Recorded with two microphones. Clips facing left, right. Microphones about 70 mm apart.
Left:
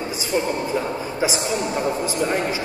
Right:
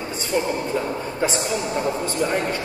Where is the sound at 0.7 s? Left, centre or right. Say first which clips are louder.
Left 1 dB; centre.